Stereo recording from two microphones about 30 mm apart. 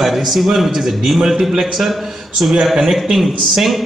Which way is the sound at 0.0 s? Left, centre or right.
Centre.